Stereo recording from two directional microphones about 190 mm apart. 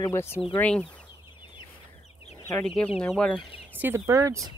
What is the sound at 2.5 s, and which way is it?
Speech, 5° left (ahead or behind).